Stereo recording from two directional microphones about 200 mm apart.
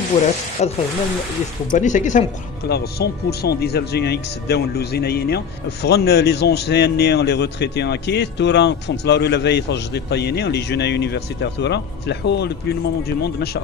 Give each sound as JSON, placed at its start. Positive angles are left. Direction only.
{"t": 0.6, "sound": "speech", "side_deg": 35}
{"t": 2.7, "sound": "speech", "side_deg": 55}